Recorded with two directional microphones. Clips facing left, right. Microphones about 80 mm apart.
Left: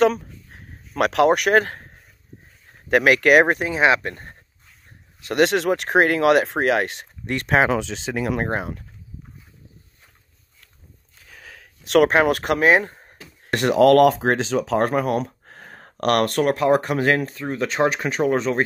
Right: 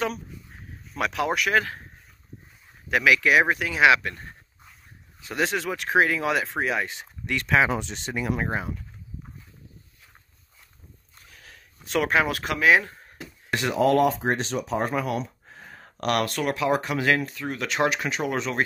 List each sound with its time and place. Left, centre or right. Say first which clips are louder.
0.0 s speech: left 11 dB; left
2.9 s speech: left 5 dB; left
3.5 s speech: left 1 dB; left
5.3 s speech: left 8 dB; left
7.2 s speech: left 3 dB; left
7.7 s speech: left 5 dB; left
11.6 s a sound: left 9 dB; left
12.1 s speech: left 6 dB; left
13.5 s speech: left 7 dB; left
15.0 s speech: left 6 dB; left